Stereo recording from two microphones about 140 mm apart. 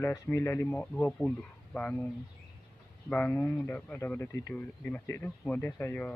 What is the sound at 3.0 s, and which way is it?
Speech, 15° left (ahead or behind).